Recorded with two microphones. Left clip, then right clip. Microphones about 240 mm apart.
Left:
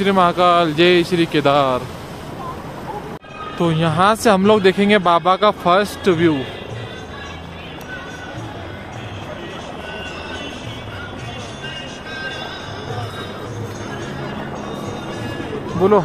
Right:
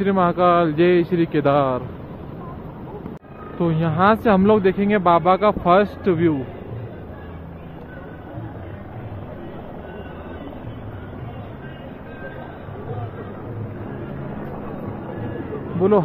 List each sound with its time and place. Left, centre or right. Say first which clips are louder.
0.0 s speech: left 3 dB; centre
3.5 s speech: left 4 dB; centre